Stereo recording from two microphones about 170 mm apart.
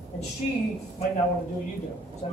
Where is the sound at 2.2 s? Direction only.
40° left (ahead or behind).